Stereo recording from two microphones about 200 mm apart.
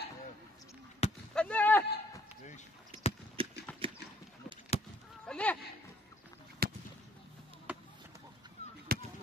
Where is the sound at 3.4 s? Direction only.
25° right (ahead or behind).